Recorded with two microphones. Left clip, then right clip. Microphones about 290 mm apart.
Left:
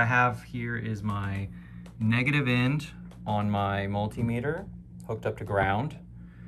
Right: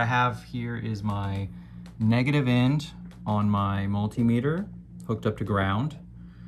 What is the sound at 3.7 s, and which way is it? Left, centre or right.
Speech, right.